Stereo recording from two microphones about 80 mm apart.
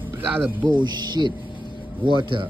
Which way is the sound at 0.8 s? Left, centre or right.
Right.